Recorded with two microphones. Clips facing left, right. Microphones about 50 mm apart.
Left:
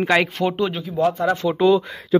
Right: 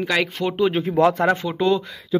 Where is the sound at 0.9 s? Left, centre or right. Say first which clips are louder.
Right 1 dB; right.